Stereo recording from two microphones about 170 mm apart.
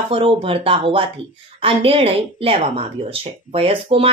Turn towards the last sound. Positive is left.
turn(degrees=-35)  # may be behind; listen again after turning